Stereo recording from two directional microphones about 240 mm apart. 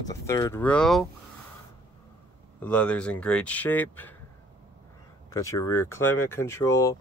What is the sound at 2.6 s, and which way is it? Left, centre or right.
Speech, centre.